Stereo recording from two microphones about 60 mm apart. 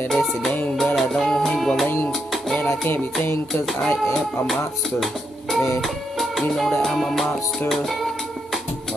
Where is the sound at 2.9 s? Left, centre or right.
Left.